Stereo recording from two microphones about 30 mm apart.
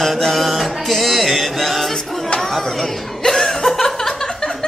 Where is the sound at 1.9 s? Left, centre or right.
Centre.